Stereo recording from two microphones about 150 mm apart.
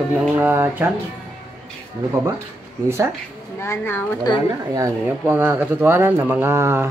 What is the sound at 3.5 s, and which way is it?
Speech, 15° left (ahead or behind).